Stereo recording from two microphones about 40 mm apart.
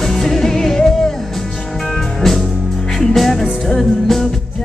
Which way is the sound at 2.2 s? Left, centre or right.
Centre.